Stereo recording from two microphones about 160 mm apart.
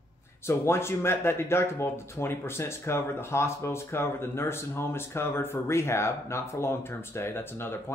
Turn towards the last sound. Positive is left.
turn(degrees=15)  # may be behind; listen again after turning